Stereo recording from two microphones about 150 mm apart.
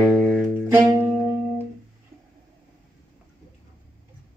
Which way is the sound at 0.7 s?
15° right (ahead or behind).